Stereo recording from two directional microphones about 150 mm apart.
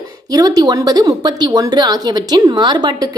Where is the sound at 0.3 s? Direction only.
25° right (ahead or behind).